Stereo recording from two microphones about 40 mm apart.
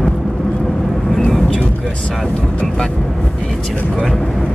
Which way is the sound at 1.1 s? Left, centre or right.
Centre.